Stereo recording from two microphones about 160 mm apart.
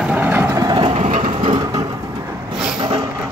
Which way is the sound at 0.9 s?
40° right (ahead or behind).